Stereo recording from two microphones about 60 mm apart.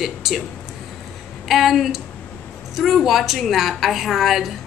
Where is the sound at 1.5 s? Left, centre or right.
Centre.